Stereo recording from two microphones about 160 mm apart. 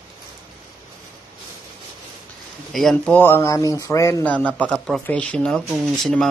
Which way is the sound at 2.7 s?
5° left (ahead or behind).